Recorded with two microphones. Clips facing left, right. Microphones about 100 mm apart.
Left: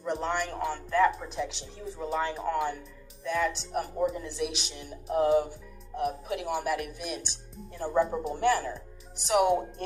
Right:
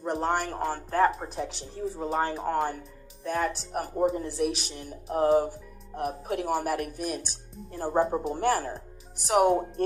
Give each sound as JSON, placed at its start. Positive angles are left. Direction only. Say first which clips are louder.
{"t": 0.0, "sound": "speech", "louder": "right 3 dB", "side_deg": -45}